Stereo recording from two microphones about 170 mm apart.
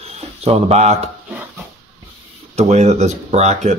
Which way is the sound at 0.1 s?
40° right (ahead or behind).